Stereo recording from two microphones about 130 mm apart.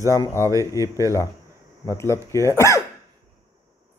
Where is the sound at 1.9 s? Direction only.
20° left (ahead or behind).